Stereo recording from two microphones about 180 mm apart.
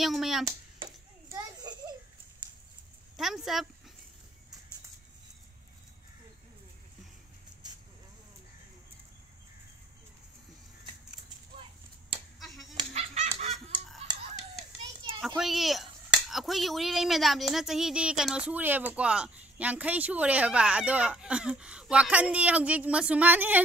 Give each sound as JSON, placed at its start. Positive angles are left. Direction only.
{"t": 0.0, "sound": "speech", "side_deg": 0}
{"t": 1.3, "sound": "a sound", "side_deg": -20}
{"t": 3.2, "sound": "speech", "side_deg": 0}
{"t": 12.4, "sound": "fowl", "side_deg": 0}
{"t": 12.7, "sound": "fowl", "side_deg": -35}
{"t": 15.2, "sound": "speech", "side_deg": 0}